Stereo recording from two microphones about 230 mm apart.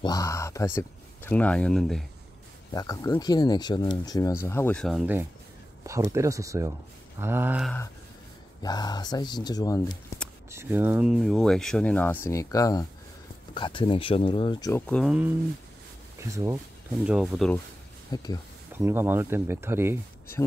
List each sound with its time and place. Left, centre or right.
0.0 s speech: centre
2.7 s speech: centre
8.6 s speech: centre
10.5 s speech: centre
14.9 s speech: centre
18.1 s speech: centre
18.7 s speech: centre